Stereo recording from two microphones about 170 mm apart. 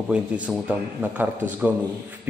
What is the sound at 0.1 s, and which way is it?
Speech, 10° right (ahead or behind).